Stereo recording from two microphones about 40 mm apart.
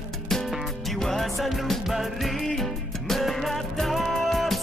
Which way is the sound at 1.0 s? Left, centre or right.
Centre.